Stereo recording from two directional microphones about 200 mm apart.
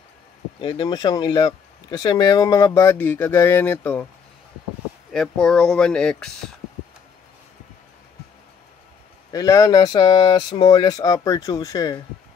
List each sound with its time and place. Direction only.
0.6 s speech: 20° left (ahead or behind)
5.1 s speech: 5° left (ahead or behind)
9.3 s speech: 15° left (ahead or behind)